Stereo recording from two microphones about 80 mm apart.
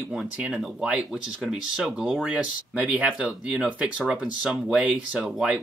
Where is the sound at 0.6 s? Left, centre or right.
Centre.